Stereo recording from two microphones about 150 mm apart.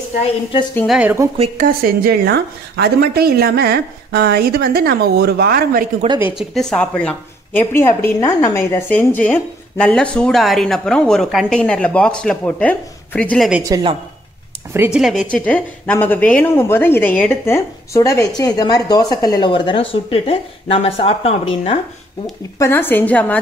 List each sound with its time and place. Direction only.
0.8 s a woman's voice: 5° right (ahead or behind)
1.6 s a woman's voice: 75° right (ahead or behind)
6.3 s a woman's voice: 5° left (ahead or behind)
13.7 s a woman's voice: 25° right (ahead or behind)
15.0 s a woman's voice: centre (ahead or behind); by 21.7 s 40° left (ahead or behind)
22.6 s a woman's voice: 15° left (ahead or behind)